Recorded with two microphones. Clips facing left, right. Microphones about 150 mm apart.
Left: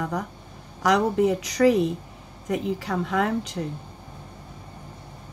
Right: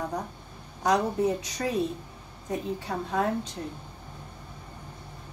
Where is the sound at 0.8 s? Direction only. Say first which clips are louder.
Left 4 dB; 90° left.